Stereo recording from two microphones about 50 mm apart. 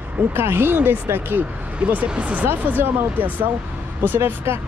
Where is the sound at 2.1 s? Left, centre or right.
Right.